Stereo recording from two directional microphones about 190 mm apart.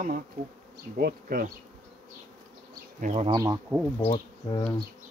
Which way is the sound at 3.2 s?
20° right (ahead or behind).